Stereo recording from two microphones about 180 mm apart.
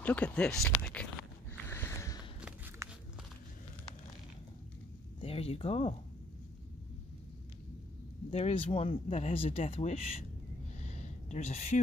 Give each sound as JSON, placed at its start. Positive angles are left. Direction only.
{"t": 0.0, "sound": "speech", "side_deg": 10}
{"t": 1.5, "sound": "a sound", "side_deg": 15}
{"t": 2.8, "sound": "walk", "side_deg": -15}
{"t": 5.2, "sound": "speech", "side_deg": 30}
{"t": 8.3, "sound": "speech", "side_deg": 35}
{"t": 11.0, "sound": "a sound", "side_deg": 40}